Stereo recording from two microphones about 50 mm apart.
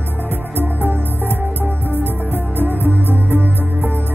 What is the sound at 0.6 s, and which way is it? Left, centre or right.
Music, right.